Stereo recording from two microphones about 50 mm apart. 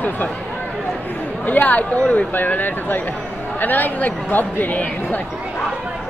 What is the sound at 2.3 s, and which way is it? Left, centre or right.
Speech, left.